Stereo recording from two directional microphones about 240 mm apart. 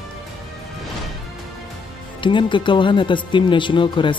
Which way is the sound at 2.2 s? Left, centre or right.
Centre.